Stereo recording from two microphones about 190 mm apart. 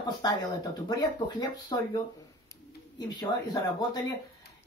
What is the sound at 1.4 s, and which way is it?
Speech, 20° left (ahead or behind).